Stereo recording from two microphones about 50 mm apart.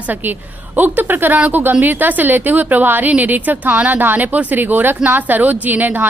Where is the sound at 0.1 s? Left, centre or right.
Right.